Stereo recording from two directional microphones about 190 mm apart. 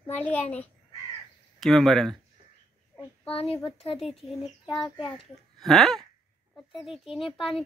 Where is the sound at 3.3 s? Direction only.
30° left (ahead or behind).